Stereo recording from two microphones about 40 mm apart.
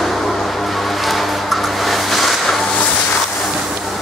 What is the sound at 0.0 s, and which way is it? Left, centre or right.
Music, centre.